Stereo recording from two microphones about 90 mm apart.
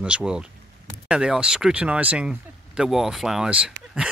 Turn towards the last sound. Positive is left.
turn(degrees=-10)  # may be behind; listen again after turning